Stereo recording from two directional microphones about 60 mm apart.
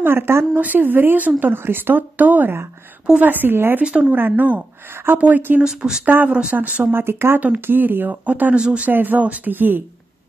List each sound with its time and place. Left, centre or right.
0.0 s speech: right
0.6 s speech: right
5.6 s speech: centre
6.0 s speech: right
7.3 s speech: right
8.5 s speech: centre
8.8 s speech: right